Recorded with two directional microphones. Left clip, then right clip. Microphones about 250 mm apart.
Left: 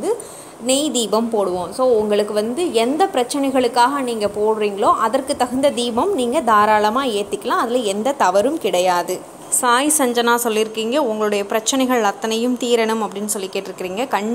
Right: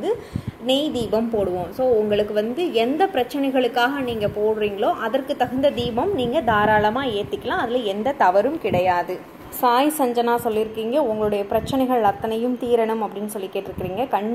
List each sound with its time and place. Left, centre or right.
0.7 s a woman's voice: centre
5.8 s a woman's voice: left
6.2 s a woman's voice: centre